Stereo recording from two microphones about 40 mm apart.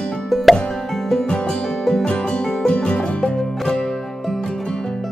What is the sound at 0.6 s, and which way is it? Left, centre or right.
Plop, centre.